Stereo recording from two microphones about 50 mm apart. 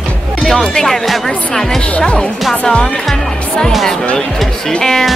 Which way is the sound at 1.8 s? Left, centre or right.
Left.